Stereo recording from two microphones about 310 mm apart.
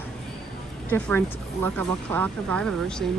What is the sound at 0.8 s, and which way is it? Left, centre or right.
A woman's voice, centre.